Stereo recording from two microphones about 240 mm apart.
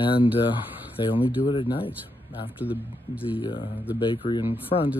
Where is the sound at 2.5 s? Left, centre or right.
Centre.